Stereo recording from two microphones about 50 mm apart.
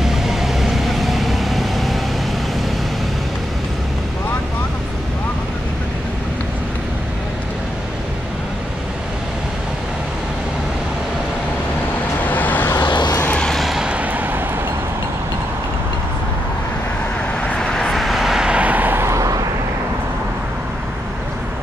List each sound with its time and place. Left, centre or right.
0.0 s vehicle: centre
12.3 s vehicle: left
13.6 s vehicle: centre
14.1 s a sound: right
17.5 s vehicle: centre
18.5 s vehicle: right
18.9 s vehicle: right